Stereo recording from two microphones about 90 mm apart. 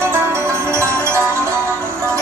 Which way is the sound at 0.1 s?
30° right (ahead or behind).